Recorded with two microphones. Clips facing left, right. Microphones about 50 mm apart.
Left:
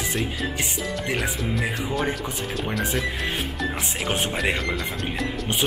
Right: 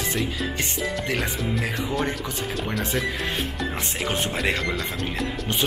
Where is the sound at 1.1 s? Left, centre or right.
Centre.